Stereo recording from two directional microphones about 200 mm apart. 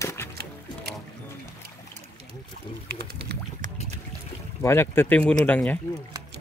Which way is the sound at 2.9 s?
50° right (ahead or behind).